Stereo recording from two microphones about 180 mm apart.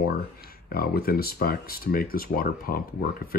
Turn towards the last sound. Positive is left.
turn(degrees=55)  # may be behind; listen again after turning